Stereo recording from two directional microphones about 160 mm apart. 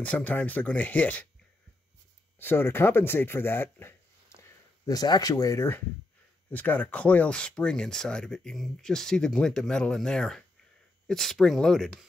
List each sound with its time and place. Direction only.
0.0 s speech: 10° left (ahead or behind)
2.3 s speech: 15° left (ahead or behind)